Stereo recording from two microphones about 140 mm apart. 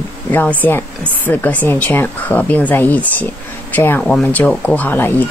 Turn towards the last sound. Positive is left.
turn(degrees=15)  # may be behind; listen again after turning